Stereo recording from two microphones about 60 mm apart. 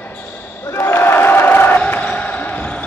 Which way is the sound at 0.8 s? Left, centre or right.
Left.